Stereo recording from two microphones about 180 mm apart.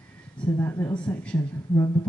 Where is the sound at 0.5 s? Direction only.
15° left (ahead or behind).